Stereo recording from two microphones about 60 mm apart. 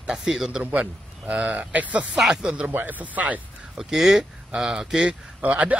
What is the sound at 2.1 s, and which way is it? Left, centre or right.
Speech, centre.